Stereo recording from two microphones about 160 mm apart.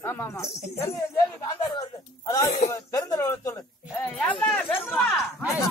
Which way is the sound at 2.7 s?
20° left (ahead or behind).